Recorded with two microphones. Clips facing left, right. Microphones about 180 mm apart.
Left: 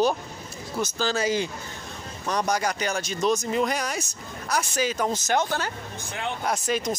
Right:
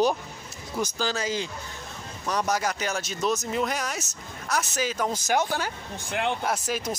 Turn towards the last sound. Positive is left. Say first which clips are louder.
# left 2 dB
turn(degrees=-10)  # may be behind; listen again after turning